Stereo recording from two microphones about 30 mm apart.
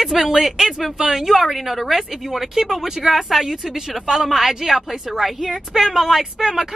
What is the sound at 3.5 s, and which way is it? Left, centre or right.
A woman's voice, centre.